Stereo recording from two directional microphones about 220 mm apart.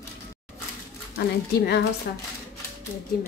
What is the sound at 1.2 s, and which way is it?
Speech, 50° left (ahead or behind).